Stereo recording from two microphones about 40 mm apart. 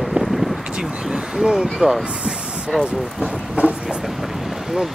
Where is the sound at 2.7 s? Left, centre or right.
Centre.